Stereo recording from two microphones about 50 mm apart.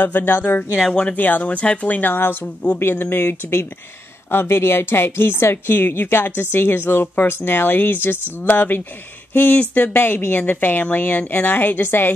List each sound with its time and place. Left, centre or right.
0.0 s speech: left
2.1 s speech: left
2.4 s speech: left
2.8 s speech: left